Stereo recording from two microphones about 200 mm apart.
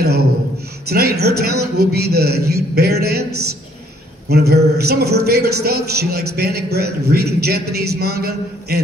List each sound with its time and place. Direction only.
0.8 s a man's voice: 50° right (ahead or behind)